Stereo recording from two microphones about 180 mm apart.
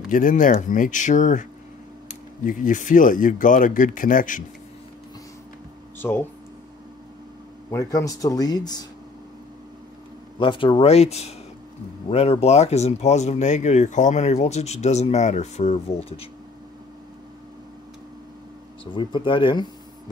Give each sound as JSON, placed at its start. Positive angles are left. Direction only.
{"t": 0.1, "sound": "speech", "side_deg": 50}
{"t": 5.9, "sound": "speech", "side_deg": 10}
{"t": 7.7, "sound": "speech", "side_deg": 15}
{"t": 10.4, "sound": "speech", "side_deg": 25}
{"t": 18.9, "sound": "speech", "side_deg": 25}